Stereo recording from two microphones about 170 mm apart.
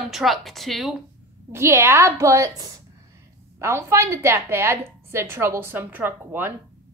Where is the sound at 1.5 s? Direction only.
15° right (ahead or behind).